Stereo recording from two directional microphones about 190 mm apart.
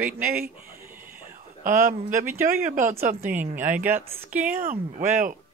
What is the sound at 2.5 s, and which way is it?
Speech, 45° right (ahead or behind).